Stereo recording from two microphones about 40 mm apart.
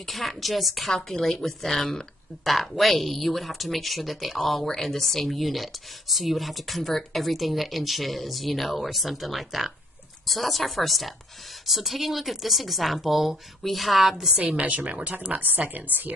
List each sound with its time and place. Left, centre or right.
0.0 s speech: centre
14.6 s a woman's voice: right